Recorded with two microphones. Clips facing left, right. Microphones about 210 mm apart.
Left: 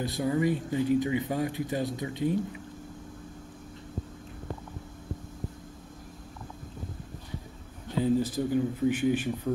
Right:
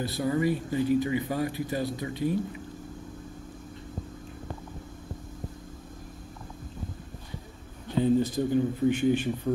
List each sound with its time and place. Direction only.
0.0 s speech: 15° left (ahead or behind)
8.0 s speech: 5° left (ahead or behind)